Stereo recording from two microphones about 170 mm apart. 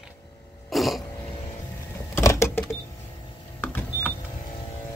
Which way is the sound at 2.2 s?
15° left (ahead or behind).